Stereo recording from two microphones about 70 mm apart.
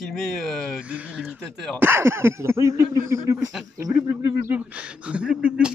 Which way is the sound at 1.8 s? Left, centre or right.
Right.